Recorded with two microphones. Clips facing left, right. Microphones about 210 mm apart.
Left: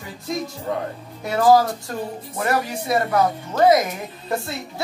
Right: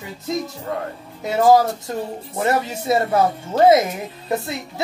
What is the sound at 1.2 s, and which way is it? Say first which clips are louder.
Speech: right 1 dB; 20° right (ahead or behind).